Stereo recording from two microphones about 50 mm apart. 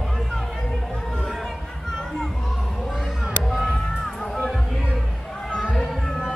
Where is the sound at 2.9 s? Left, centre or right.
Centre.